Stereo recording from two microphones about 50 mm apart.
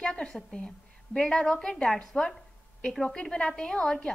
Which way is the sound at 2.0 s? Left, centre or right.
Centre.